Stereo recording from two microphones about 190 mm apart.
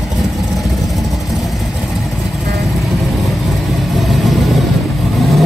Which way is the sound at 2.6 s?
Centre (ahead or behind).